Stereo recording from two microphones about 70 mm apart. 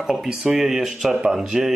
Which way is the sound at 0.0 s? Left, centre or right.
Centre.